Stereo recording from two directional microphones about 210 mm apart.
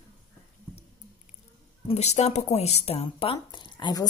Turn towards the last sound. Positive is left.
turn(degrees=20)  # may be behind; listen again after turning